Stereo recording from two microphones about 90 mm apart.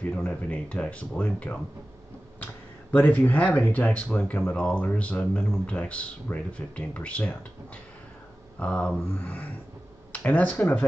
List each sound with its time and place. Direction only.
0.0 s speech: 15° left (ahead or behind)
8.5 s speech: 10° left (ahead or behind)